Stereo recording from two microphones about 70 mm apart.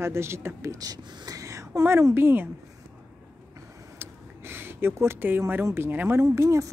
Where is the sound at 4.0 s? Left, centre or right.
Right.